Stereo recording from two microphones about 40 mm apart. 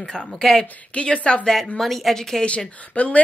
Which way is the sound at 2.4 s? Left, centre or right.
Left.